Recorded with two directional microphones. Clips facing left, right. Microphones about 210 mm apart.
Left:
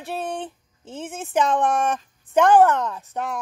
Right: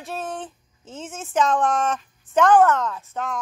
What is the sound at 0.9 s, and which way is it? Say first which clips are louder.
Speech: left 2 dB; 60° left (ahead or behind).